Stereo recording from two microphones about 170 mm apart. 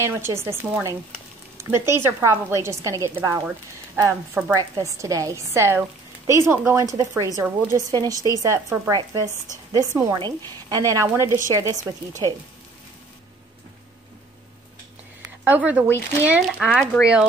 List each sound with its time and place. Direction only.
0.0 s speech: 15° right (ahead or behind)
15.4 s speech: 10° right (ahead or behind)